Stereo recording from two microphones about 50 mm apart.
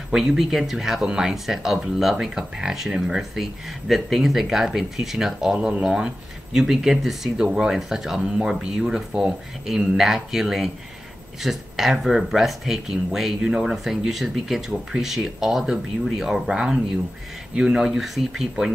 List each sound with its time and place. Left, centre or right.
0.1 s speech: centre
5.5 s speech: centre
13.4 s speech: centre